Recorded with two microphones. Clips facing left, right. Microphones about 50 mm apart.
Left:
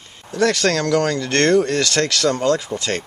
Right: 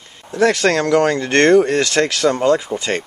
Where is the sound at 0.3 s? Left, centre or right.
Centre.